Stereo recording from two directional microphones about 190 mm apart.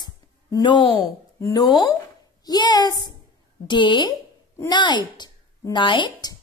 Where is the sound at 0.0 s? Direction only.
20° left (ahead or behind).